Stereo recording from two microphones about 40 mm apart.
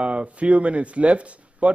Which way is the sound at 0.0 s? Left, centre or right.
Right.